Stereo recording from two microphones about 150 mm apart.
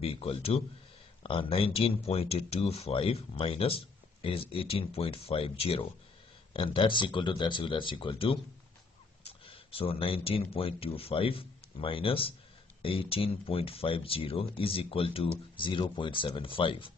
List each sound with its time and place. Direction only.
0.0 s speech: 40° left (ahead or behind)